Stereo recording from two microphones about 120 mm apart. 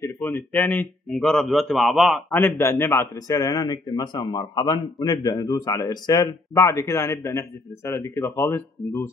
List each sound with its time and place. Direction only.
0.0 s a man's voice: 15° left (ahead or behind); by 2.2 s centre (ahead or behind)
2.3 s a man's voice: 20° left (ahead or behind)